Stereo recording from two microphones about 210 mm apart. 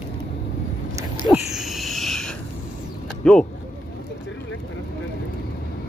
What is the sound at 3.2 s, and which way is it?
Speech, 5° left (ahead or behind).